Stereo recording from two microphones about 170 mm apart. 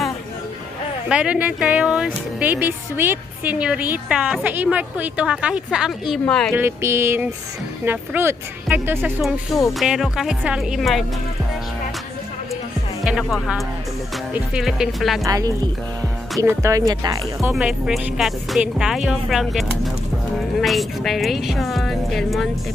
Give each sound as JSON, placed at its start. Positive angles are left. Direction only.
{"t": 1.0, "sound": "speech", "side_deg": -5}
{"t": 6.5, "sound": "speech", "side_deg": -15}
{"t": 9.8, "sound": "speech", "side_deg": 0}
{"t": 13.0, "sound": "speech", "side_deg": 0}
{"t": 15.2, "sound": "speech", "side_deg": -20}
{"t": 17.5, "sound": "speech", "side_deg": -5}
{"t": 20.6, "sound": "speech", "side_deg": 0}